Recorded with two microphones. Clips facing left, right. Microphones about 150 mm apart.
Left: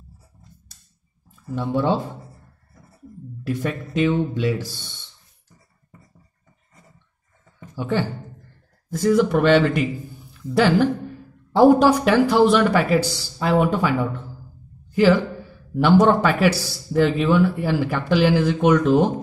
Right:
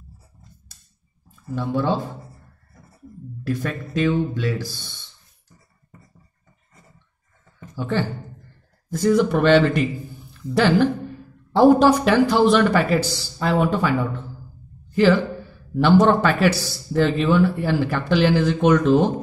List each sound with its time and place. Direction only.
1.5 s speech: 20° left (ahead or behind)
3.4 s speech: 20° left (ahead or behind)
7.7 s speech: 10° left (ahead or behind)
15.7 s speech: 5° left (ahead or behind)